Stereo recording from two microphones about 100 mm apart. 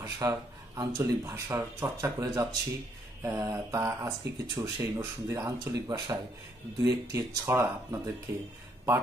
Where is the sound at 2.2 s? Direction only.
35° right (ahead or behind).